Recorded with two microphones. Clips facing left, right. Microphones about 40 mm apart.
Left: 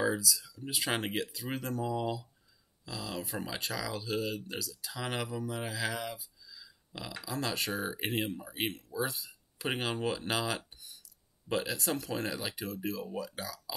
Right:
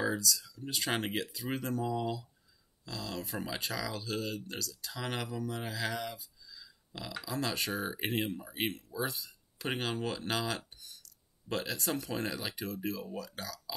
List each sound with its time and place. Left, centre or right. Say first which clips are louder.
0.0 s speech: left 1 dB; centre